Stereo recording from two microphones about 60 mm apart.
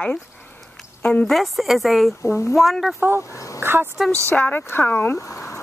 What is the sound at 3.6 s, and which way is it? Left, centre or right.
Speech, right.